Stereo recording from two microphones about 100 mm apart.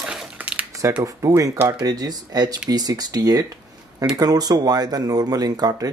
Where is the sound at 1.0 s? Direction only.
35° right (ahead or behind).